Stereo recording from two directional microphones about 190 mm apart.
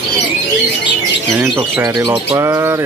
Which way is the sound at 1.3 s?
10° right (ahead or behind).